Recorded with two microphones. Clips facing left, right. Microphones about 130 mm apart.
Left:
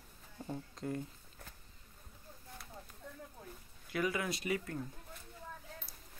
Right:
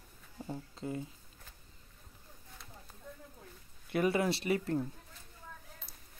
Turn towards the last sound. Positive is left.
turn(degrees=-30)  # may be behind; listen again after turning